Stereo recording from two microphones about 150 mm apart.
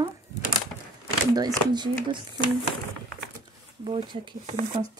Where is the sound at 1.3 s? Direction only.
30° right (ahead or behind).